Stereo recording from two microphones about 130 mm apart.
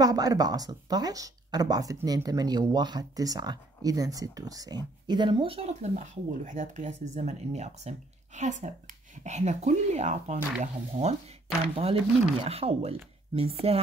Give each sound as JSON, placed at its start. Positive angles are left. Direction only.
{"t": 0.0, "sound": "speech", "side_deg": -30}